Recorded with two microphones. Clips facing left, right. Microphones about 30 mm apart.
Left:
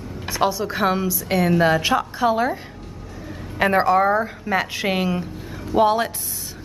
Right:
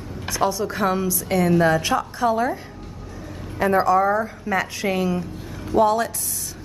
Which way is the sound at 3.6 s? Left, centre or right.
Left.